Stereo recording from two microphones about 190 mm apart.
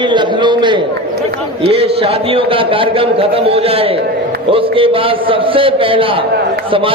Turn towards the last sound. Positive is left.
turn(degrees=-30)  # may be behind; listen again after turning